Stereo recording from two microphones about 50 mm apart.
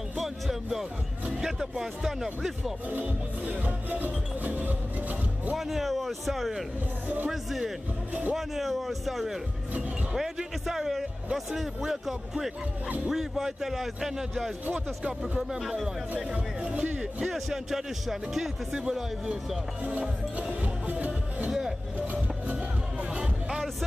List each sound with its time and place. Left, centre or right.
0.2 s music: centre
1.3 s speech: centre
2.9 s speech: right
5.6 s speech: centre
8.1 s speech: right
8.4 s speech: centre
14.7 s speech: right
15.6 s speech: centre
17.2 s speech: centre
19.8 s speech: right
20.8 s music: right
21.5 s vehicle: centre